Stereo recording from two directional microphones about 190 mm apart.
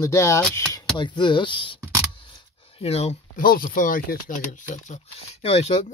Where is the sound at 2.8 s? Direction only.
35° left (ahead or behind).